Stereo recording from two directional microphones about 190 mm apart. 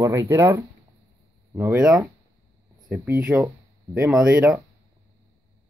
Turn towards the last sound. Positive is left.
turn(degrees=-5)  # may be behind; listen again after turning